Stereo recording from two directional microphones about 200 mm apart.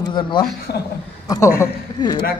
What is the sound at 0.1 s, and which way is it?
Speech, 25° left (ahead or behind).